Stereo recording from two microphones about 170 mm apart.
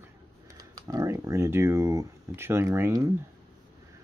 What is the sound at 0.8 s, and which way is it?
Speech, 20° right (ahead or behind).